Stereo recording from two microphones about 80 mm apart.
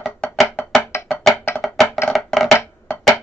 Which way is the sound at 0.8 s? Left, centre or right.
Left.